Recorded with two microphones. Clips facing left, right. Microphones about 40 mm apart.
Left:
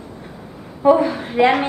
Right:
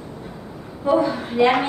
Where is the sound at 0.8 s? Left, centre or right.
Left.